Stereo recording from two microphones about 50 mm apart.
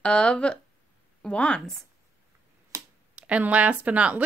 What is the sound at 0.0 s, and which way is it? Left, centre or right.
A woman's voice, centre.